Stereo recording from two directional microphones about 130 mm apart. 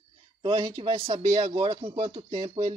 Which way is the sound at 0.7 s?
45° right (ahead or behind).